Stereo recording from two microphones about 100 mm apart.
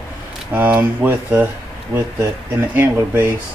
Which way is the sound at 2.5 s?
20° right (ahead or behind).